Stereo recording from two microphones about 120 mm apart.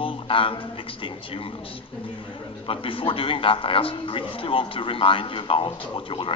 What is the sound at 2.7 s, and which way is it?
A man's voice, 50° left (ahead or behind).